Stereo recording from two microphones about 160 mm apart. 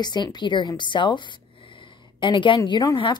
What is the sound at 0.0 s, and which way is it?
A woman's voice, 25° left (ahead or behind).